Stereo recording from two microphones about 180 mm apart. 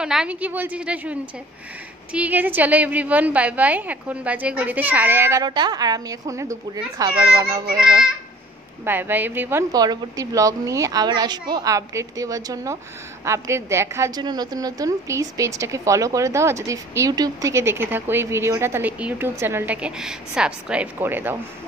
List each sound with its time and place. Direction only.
0.0 s a woman's voice: 5° right (ahead or behind)
2.1 s a woman's voice: 10° right (ahead or behind)
7.8 s a child's voice: 5° right (ahead or behind)